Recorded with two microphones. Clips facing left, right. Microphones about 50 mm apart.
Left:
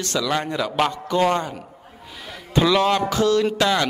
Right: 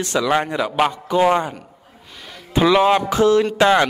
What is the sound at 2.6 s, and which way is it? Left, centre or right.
Speech, centre.